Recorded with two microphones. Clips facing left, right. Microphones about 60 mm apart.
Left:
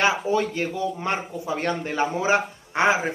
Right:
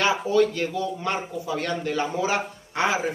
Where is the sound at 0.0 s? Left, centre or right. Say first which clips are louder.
Right 1 dB; left.